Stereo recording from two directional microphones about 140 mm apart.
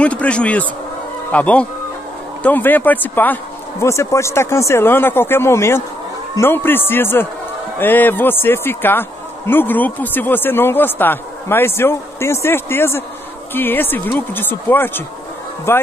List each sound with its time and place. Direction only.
0.0 s speech: 10° left (ahead or behind)